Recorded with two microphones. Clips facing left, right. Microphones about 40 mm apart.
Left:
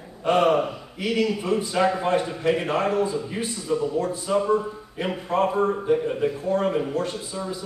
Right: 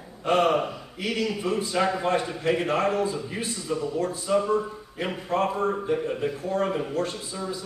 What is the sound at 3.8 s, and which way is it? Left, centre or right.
Speech, centre.